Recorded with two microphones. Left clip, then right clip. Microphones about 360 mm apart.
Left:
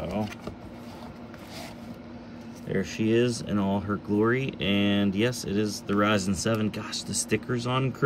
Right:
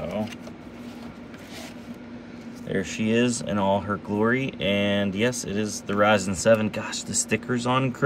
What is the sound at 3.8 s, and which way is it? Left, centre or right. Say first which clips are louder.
Speech: right 1 dB; right.